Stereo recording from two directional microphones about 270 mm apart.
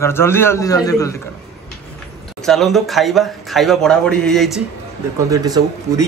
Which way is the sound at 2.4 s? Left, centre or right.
Centre.